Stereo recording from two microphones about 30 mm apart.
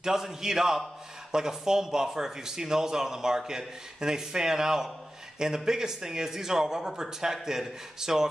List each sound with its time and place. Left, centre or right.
0.0 s speech: centre